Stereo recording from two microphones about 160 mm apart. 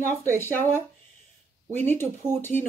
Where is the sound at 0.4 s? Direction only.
15° left (ahead or behind).